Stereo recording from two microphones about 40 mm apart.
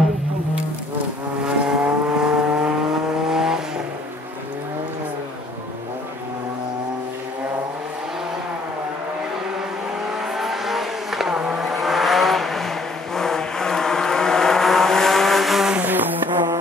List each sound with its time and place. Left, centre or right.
1.4 s vehicle: right
10.0 s vehicle: centre
11.7 s vehicle: centre
15.8 s vehicle: right